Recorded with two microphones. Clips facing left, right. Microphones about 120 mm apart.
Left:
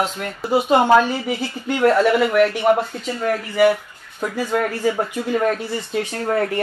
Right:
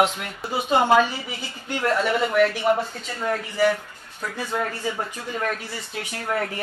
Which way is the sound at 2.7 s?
65° left (ahead or behind).